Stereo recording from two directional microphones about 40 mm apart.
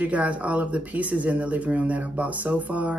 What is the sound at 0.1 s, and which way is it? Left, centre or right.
Speech, right.